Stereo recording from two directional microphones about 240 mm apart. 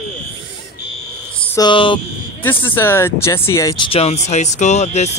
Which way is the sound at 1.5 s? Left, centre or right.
Centre.